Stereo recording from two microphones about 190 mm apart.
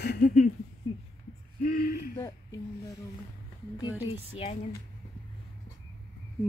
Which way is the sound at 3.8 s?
10° right (ahead or behind).